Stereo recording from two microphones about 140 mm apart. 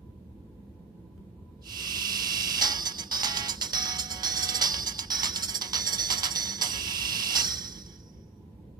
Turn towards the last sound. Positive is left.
turn(degrees=-30)  # may be behind; listen again after turning